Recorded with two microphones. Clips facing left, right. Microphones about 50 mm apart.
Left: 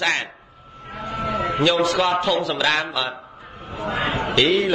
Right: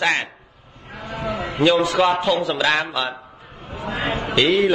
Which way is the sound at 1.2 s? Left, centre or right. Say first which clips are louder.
Left 3 dB; left.